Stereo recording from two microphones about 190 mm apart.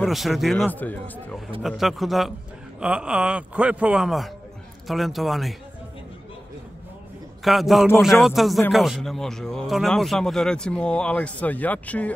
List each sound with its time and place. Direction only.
0.0 s speech: centre (ahead or behind)
7.4 s speech: centre (ahead or behind)